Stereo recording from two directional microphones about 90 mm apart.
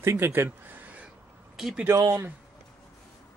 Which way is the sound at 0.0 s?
30° right (ahead or behind).